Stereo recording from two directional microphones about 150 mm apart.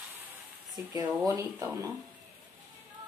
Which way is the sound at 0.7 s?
25° right (ahead or behind).